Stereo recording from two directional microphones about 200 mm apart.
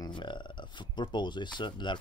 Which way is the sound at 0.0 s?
25° left (ahead or behind).